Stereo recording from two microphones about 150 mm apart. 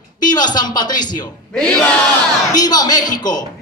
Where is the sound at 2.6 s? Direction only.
25° left (ahead or behind).